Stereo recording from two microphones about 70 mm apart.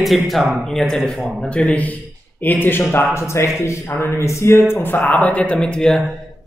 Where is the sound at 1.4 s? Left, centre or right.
Centre.